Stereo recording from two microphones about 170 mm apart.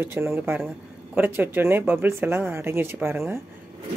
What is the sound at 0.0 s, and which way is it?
Speech, 15° right (ahead or behind).